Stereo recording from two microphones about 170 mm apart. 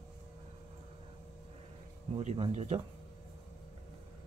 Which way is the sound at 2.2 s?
45° right (ahead or behind).